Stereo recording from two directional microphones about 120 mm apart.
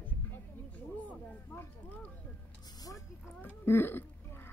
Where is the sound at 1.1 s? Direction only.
10° left (ahead or behind).